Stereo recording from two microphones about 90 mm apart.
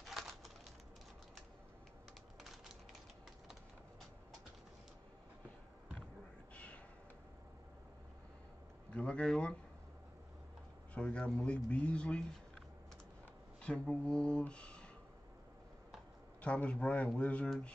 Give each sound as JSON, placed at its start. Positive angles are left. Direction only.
{"t": 0.0, "sound": "a sound", "side_deg": 0}
{"t": 6.5, "sound": "a sound", "side_deg": 15}
{"t": 8.9, "sound": "speech", "side_deg": 10}
{"t": 11.0, "sound": "speech", "side_deg": 10}
{"t": 13.6, "sound": "speech", "side_deg": 10}
{"t": 16.3, "sound": "speech", "side_deg": 15}